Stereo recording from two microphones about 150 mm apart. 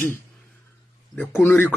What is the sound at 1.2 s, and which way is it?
Speech, 15° left (ahead or behind).